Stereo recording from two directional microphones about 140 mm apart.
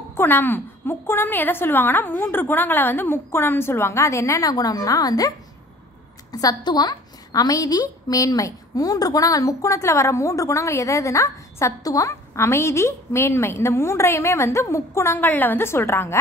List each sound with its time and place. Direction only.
0.1 s a woman's voice: 15° left (ahead or behind)
6.3 s a woman's voice: 30° left (ahead or behind)